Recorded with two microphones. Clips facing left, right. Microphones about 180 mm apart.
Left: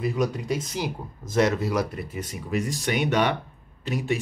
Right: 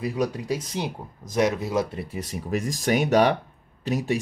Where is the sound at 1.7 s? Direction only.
25° right (ahead or behind).